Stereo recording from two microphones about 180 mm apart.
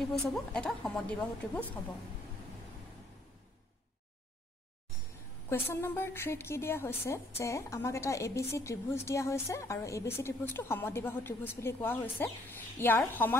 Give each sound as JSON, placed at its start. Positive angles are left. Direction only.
{"t": 0.1, "sound": "a woman's voice", "side_deg": 5}
{"t": 5.5, "sound": "a woman's voice", "side_deg": 15}